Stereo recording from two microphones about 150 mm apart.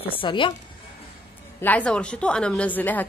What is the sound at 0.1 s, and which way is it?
Speech, 35° left (ahead or behind).